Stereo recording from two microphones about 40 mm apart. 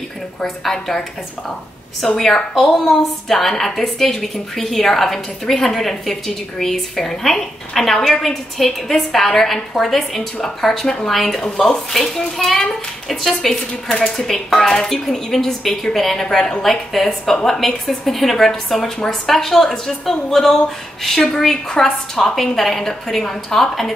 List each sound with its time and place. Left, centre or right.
0.4 s a woman's voice: centre
11.4 s a woman's voice: centre
13.8 s a woman's voice: centre
21.7 s a woman's voice: centre
22.3 s a woman's voice: centre